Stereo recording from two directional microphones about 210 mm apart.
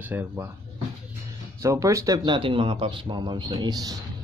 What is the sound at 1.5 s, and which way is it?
Speech, 15° right (ahead or behind).